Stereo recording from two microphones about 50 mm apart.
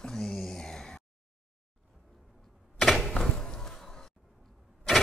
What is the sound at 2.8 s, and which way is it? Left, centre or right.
Door, centre.